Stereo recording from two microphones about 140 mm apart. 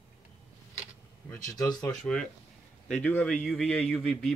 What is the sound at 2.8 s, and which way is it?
A man's voice, 5° left (ahead or behind).